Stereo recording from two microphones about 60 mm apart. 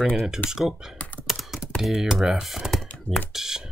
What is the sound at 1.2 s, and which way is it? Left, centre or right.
Computer keyboard, centre.